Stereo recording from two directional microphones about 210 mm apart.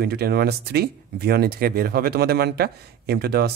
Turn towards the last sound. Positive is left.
turn(degrees=-50)  # may be behind; listen again after turning